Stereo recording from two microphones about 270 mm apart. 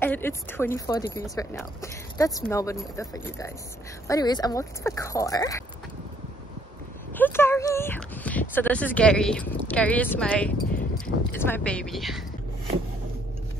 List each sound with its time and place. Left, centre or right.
0.0 s speech: centre
7.2 s speech: centre